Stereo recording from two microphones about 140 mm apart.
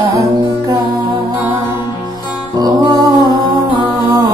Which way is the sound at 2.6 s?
30° right (ahead or behind).